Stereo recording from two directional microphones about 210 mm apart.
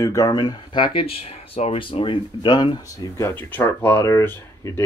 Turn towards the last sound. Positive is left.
turn(degrees=10)  # may be behind; listen again after turning